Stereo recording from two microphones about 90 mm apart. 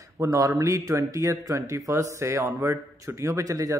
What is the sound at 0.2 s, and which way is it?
A man's voice, 40° right (ahead or behind).